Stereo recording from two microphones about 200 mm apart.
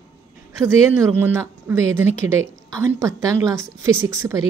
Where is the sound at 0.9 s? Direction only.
10° right (ahead or behind).